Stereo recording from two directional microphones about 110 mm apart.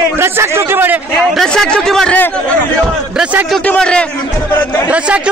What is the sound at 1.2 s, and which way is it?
Speech, 5° left (ahead or behind).